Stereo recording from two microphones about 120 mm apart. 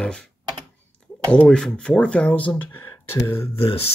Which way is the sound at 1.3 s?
10° left (ahead or behind).